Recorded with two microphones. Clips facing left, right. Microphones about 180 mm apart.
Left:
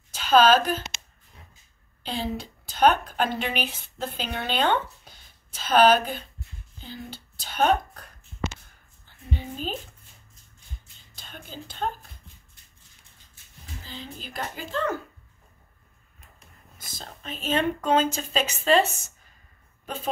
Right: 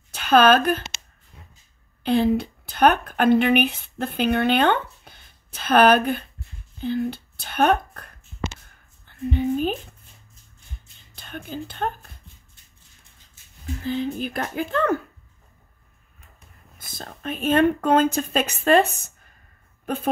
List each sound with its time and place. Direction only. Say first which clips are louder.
0.1 s a woman's voice: right 2 dB; 55° right (ahead or behind)
2.0 s a woman's voice: right 11 dB; 60° right (ahead or behind)
9.0 s a sound: right 12 dB; 55° right (ahead or behind)
11.1 s speech: right 8 dB; 60° right (ahead or behind)
13.8 s speech: right 15 dB; 55° right (ahead or behind)
16.7 s speech: right 4 dB; 55° right (ahead or behind)